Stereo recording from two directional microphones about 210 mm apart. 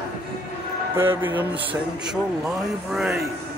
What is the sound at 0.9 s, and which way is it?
A man's voice, 10° right (ahead or behind).